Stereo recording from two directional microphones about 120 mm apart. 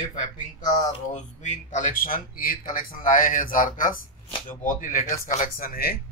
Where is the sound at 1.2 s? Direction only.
90° left.